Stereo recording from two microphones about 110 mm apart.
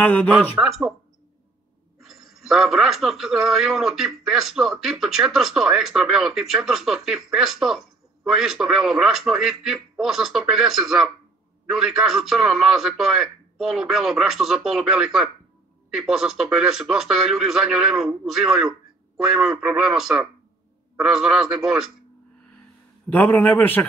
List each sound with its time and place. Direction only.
0.0 s a man's voice: 15° left (ahead or behind)
0.6 s speech: 5° right (ahead or behind)
2.0 s speech: centre (ahead or behind)
23.1 s a man's voice: 15° left (ahead or behind)